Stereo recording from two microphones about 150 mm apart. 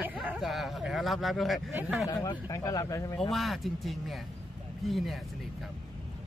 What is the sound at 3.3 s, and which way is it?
Speech, centre (ahead or behind).